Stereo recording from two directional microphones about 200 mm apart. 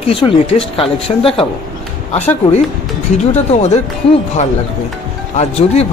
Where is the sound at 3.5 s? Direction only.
30° left (ahead or behind).